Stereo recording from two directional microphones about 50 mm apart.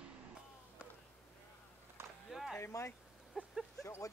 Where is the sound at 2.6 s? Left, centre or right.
Left.